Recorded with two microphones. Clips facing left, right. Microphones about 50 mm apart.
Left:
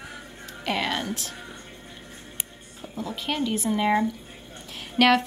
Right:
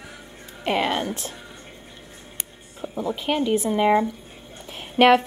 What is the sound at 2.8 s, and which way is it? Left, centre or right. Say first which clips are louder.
A woman's voice: right 6 dB; right.